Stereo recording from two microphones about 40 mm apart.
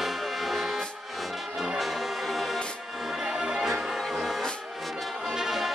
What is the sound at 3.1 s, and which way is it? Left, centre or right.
Music, centre.